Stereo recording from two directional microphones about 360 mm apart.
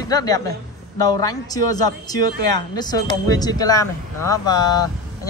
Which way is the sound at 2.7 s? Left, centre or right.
Centre.